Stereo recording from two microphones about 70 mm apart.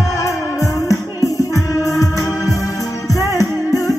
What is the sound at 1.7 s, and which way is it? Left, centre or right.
Music, left.